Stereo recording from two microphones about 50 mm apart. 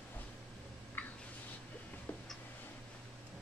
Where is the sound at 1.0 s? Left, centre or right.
Left.